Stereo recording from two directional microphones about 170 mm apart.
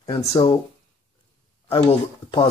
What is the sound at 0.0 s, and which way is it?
Speech, 20° left (ahead or behind).